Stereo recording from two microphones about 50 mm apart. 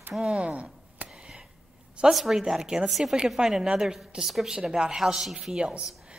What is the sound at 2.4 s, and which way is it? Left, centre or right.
Speech, centre.